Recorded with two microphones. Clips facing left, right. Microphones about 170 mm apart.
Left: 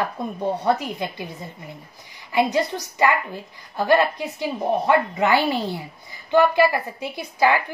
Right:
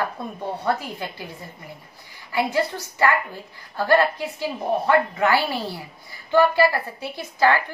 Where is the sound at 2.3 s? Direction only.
20° left (ahead or behind).